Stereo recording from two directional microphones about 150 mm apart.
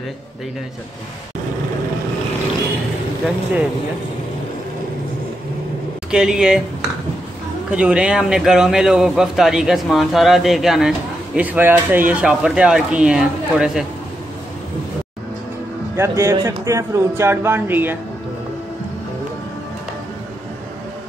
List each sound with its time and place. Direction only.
6.1 s speech: 5° right (ahead or behind)
7.7 s speech: 5° right (ahead or behind)
16.0 s speech: 15° right (ahead or behind)